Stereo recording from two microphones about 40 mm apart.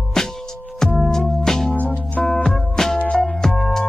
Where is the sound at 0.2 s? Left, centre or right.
Centre.